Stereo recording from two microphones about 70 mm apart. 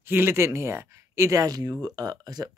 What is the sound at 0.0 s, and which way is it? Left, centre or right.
Speech, right.